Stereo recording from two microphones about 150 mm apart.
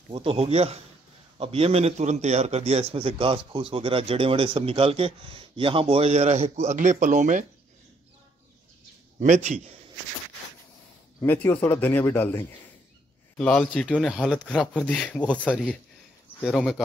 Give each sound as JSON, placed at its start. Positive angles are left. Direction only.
{"t": 0.1, "sound": "a man's voice", "side_deg": -35}
{"t": 9.2, "sound": "a man's voice", "side_deg": -55}
{"t": 11.2, "sound": "speech", "side_deg": 10}